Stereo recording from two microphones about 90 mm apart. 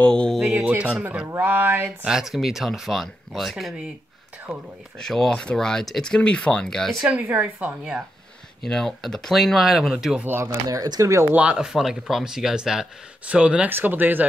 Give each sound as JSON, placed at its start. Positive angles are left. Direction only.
{"t": 0.0, "sound": "speech", "side_deg": 10}
{"t": 0.4, "sound": "speech", "side_deg": -10}
{"t": 2.0, "sound": "speech", "side_deg": -5}
{"t": 4.9, "sound": "speech", "side_deg": 5}
{"t": 7.1, "sound": "speech", "side_deg": -20}
{"t": 8.6, "sound": "speech", "side_deg": 5}
{"t": 10.2, "sound": "speech", "side_deg": -25}
{"t": 10.7, "sound": "speech", "side_deg": -45}
{"t": 11.3, "sound": "speech", "side_deg": -10}